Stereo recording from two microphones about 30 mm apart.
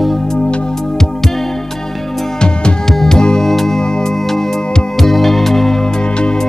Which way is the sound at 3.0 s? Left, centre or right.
Left.